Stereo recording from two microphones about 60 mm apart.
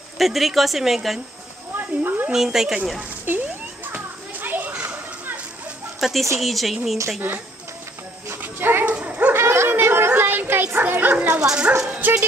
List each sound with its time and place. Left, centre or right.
0.2 s a woman's voice: centre
1.8 s speech: right
2.3 s speech: centre
3.3 s a woman's voice: right
3.9 s children playing: right
5.9 s a woman's voice: centre
7.2 s a woman's voice: right
8.9 s dog: right
9.3 s speech: right
12.0 s speech: right